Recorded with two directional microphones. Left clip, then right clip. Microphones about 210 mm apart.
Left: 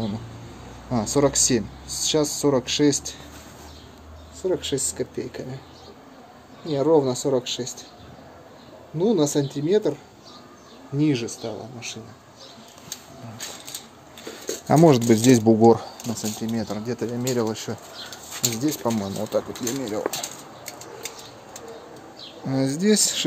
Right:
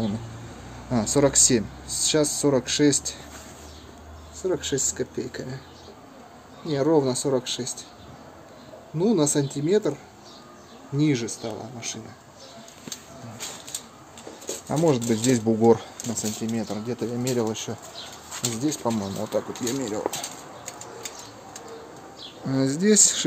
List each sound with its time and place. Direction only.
0.8 s speech: 5° right (ahead or behind)
4.4 s speech: 5° right (ahead or behind)
6.7 s speech: 15° right (ahead or behind)
8.9 s speech: 10° right (ahead or behind)
11.0 s speech: 10° right (ahead or behind)
14.7 s speech: 35° left (ahead or behind)
15.6 s speech: 10° left (ahead or behind)
16.1 s speech: centre (ahead or behind)
22.5 s speech: centre (ahead or behind)